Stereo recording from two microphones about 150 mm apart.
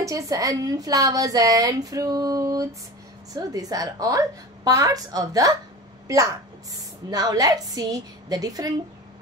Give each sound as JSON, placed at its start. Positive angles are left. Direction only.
{"t": 0.0, "sound": "a woman's voice", "side_deg": -20}
{"t": 6.7, "sound": "a woman's voice", "side_deg": -25}